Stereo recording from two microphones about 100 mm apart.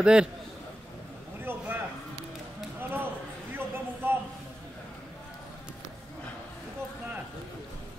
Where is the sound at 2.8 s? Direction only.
20° right (ahead or behind).